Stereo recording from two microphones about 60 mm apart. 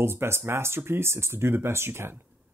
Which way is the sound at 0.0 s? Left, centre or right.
Right.